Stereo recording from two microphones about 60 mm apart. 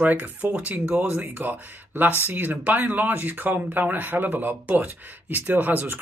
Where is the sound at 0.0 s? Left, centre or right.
Right.